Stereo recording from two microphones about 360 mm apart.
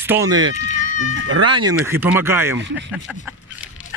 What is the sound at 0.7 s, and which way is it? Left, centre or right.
Speech, right.